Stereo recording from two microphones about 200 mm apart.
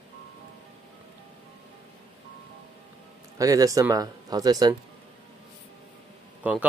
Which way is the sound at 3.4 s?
15° right (ahead or behind).